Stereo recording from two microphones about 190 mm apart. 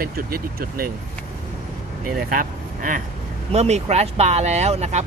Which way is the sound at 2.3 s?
45° right (ahead or behind).